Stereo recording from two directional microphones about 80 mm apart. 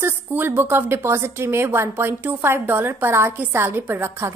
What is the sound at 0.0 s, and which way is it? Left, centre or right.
A woman's voice, right.